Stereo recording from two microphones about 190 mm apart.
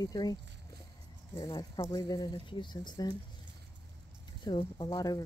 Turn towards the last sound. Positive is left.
turn(degrees=20)  # may be behind; listen again after turning